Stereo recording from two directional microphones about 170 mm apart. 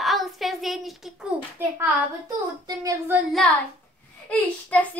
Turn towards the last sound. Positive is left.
turn(degrees=10)  # may be behind; listen again after turning